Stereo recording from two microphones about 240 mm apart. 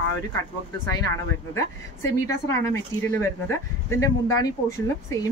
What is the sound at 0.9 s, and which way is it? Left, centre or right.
A woman's voice, centre.